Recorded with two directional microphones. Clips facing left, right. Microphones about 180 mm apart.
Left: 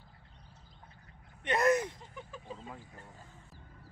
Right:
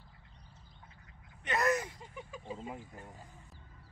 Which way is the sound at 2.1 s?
10° right (ahead or behind).